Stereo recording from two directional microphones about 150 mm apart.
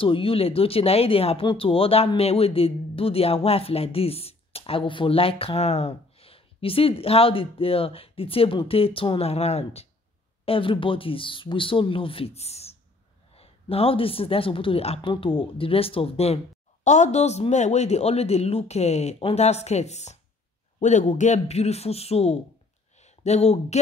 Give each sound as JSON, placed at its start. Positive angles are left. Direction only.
{"t": 0.0, "sound": "speech", "side_deg": 35}
{"t": 16.8, "sound": "a man's voice", "side_deg": 50}